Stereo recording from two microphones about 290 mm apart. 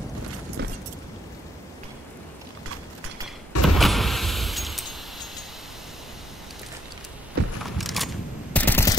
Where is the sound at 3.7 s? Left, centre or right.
Centre.